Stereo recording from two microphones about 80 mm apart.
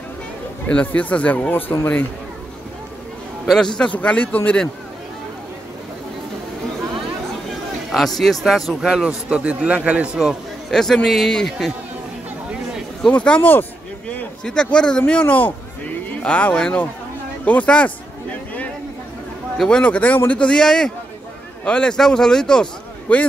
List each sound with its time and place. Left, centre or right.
0.7 s speech: centre
3.7 s a man's voice: centre
7.9 s speech: centre
8.8 s a man's voice: centre
10.7 s speech: centre
13.0 s a man's voice: centre
17.5 s a sound: centre
19.5 s speech: centre
19.8 s a man's voice: centre